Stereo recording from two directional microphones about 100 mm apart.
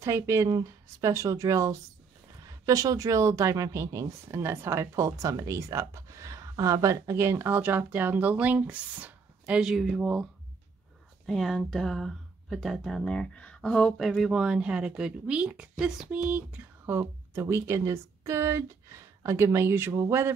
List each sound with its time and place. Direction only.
0.0 s speech: 25° right (ahead or behind)
9.6 s speech: centre (ahead or behind)
11.2 s speech: centre (ahead or behind); by 20.3 s 25° right (ahead or behind)